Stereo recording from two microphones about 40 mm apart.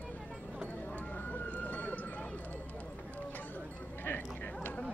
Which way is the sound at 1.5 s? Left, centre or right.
Left.